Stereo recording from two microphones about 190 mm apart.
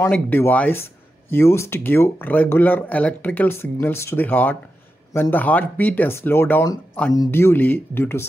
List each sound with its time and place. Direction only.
0.0 s speech: 10° left (ahead or behind)